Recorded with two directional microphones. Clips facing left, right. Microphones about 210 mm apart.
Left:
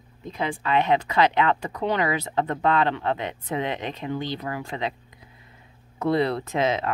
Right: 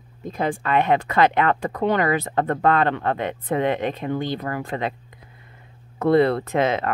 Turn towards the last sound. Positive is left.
turn(degrees=-55)  # may be behind; listen again after turning